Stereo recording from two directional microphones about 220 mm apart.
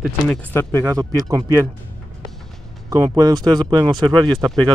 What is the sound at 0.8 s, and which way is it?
Speech, 15° right (ahead or behind).